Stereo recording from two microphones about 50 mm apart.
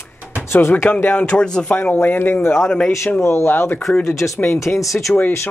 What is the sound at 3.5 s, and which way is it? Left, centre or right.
Speech, left.